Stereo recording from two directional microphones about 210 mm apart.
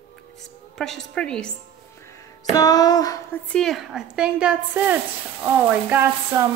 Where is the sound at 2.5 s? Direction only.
15° left (ahead or behind).